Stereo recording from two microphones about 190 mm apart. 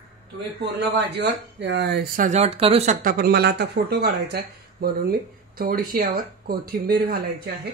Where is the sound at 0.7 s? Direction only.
60° right (ahead or behind).